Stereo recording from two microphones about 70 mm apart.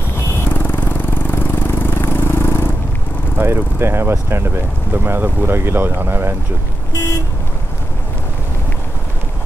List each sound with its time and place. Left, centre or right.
0.5 s vehicle: left
3.3 s speech: right